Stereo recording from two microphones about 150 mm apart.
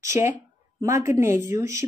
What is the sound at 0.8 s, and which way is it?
Speech, 20° right (ahead or behind).